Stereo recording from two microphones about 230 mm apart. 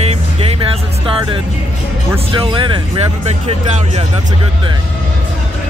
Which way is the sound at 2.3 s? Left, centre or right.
Right.